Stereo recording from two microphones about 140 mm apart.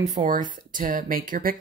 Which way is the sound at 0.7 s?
75° right (ahead or behind).